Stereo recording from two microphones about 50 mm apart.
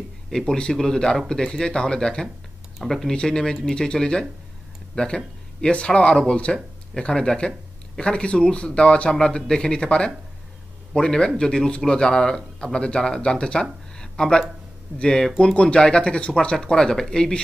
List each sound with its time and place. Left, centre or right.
0.6 s speech: centre
2.8 s speech: centre
3.1 s speech: centre
13.9 s a sound: centre
15.0 s speech: centre